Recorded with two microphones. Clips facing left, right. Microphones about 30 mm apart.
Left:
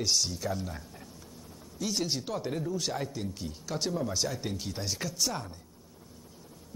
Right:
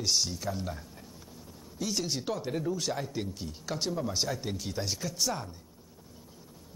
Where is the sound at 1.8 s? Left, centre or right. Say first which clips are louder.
Even; centre.